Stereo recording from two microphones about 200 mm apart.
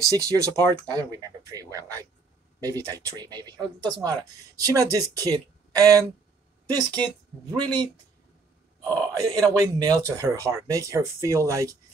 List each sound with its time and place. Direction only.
0.2 s a woman's voice: 15° right (ahead or behind)
8.8 s a man's voice: 10° left (ahead or behind)
9.5 s speech: 20° right (ahead or behind)